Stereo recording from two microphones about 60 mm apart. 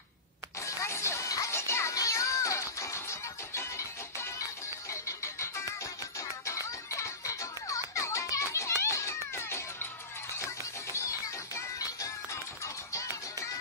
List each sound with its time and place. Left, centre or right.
0.6 s music: left
1.5 s music: left
2.0 s music: left